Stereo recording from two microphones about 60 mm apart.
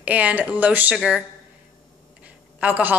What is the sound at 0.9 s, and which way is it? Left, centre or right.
Speech, centre.